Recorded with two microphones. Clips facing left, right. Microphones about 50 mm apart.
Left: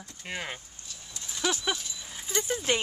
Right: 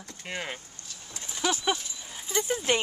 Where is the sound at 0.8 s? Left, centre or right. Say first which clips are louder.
Right 1 dB; right.